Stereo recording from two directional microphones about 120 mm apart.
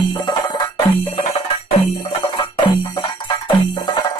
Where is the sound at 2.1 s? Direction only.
50° left (ahead or behind).